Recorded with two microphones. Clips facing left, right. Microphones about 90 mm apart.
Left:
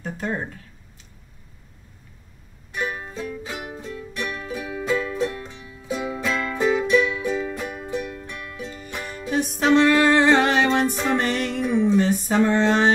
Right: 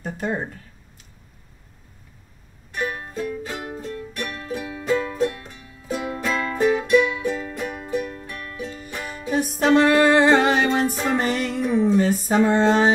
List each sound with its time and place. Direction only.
0.0 s speech: 10° right (ahead or behind)
2.7 s music: centre (ahead or behind)
4.9 s music: 35° right (ahead or behind)
5.2 s music: centre (ahead or behind)
7.6 s music: 45° right (ahead or behind)
7.9 s music: 5° right (ahead or behind)
11.9 s a sound: centre (ahead or behind)